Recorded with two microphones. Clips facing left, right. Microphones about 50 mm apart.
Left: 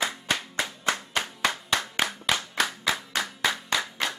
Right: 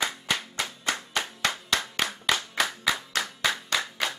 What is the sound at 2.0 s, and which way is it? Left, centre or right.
Clapping, centre.